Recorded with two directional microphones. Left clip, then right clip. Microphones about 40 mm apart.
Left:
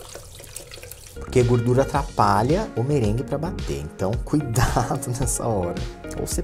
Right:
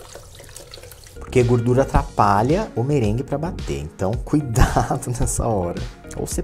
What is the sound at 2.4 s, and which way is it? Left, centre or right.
Speech, centre.